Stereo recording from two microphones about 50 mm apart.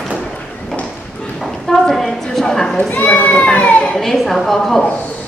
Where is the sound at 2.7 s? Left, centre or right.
Left.